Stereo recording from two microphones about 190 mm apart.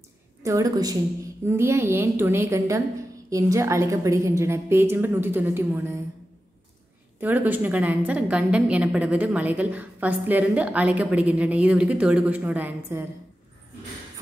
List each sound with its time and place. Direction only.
0.4 s a woman's voice: 20° right (ahead or behind)
7.2 s a woman's voice: 10° right (ahead or behind)